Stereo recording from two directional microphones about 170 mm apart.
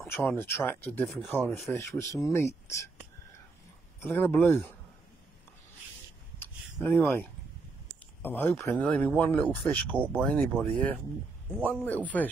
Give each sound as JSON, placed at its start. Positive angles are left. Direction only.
{"t": 0.1, "sound": "speech", "side_deg": 10}
{"t": 4.0, "sound": "speech", "side_deg": 10}
{"t": 6.4, "sound": "a sound", "side_deg": 15}
{"t": 8.2, "sound": "speech", "side_deg": 10}